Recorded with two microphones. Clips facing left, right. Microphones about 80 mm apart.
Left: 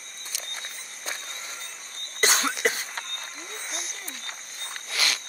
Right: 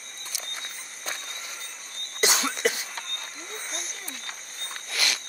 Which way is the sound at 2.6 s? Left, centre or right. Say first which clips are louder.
Even; left.